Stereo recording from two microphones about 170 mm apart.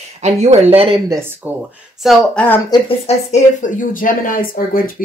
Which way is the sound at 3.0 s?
45° left (ahead or behind).